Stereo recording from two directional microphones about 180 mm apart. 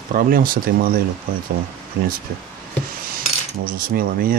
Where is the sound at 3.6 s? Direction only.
55° right (ahead or behind).